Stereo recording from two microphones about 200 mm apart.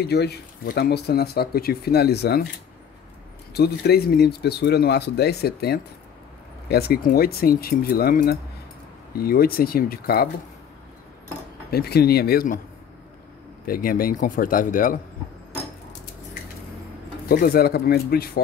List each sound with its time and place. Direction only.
0.0 s speech: 55° left (ahead or behind)
3.5 s speech: 55° left (ahead or behind)
11.7 s speech: 50° left (ahead or behind)
13.7 s speech: 45° left (ahead or behind)
17.3 s speech: 50° left (ahead or behind)